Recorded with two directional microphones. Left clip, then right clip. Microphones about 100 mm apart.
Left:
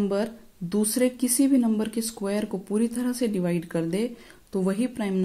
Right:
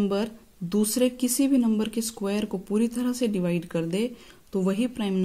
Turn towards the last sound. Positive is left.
turn(degrees=-15)  # may be behind; listen again after turning